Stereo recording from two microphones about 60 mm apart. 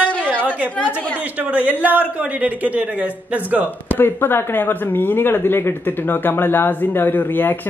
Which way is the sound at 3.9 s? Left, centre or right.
Left.